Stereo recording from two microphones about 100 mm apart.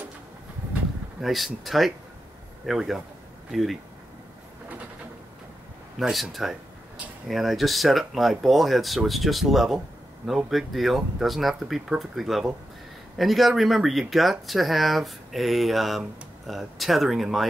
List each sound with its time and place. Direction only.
1.2 s speech: centre (ahead or behind)
5.9 s speech: 5° right (ahead or behind)